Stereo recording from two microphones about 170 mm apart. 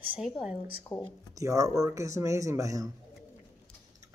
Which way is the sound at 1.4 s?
20° right (ahead or behind).